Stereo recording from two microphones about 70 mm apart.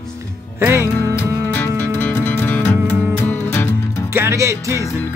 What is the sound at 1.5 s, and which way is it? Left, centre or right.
Music, left.